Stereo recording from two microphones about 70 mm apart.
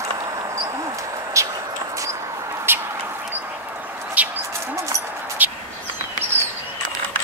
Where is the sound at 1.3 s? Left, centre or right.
Right.